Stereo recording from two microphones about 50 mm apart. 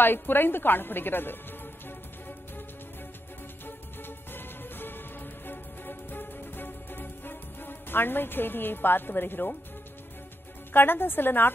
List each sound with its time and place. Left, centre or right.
0.0 s a woman's voice: left
4.3 s music: left
10.7 s a woman's voice: left